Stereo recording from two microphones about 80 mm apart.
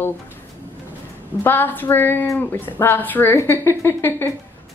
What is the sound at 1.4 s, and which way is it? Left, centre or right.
A woman's voice, left.